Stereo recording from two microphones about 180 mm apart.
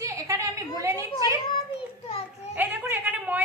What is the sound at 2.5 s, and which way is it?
Speech, 10° right (ahead or behind).